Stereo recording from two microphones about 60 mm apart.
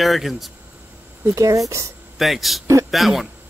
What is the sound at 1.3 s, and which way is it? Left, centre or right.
Speech, right.